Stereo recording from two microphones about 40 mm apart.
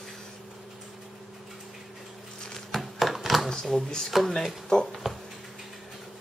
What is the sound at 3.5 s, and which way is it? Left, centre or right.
Speech, centre.